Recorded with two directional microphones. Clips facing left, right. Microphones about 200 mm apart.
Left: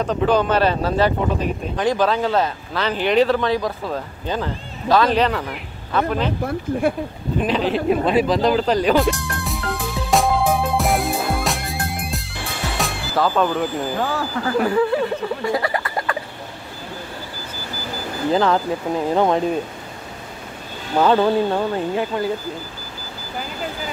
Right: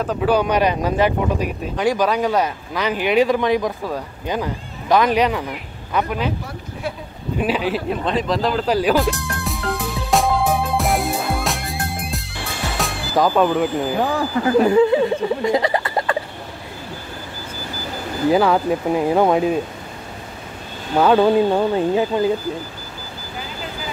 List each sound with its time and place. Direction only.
0.0 s speech: 5° right (ahead or behind)
6.7 s speech: 55° left (ahead or behind)
7.3 s speech: 10° right (ahead or behind)
8.0 s speech: 5° left (ahead or behind)
10.1 s music: centre (ahead or behind)
13.1 s speech: 15° right (ahead or behind)
18.3 s speech: 10° right (ahead or behind)
21.0 s speech: 10° right (ahead or behind)